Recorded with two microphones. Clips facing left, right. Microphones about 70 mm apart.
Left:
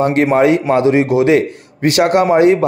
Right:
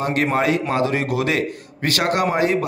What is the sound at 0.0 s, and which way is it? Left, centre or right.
A man's voice, left.